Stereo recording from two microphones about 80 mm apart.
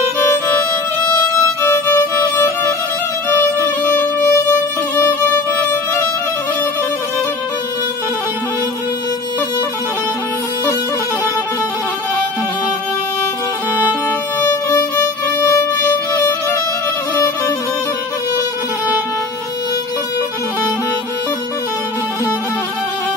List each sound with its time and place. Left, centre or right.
2.0 s music: left
3.9 s music: left
15.4 s music: left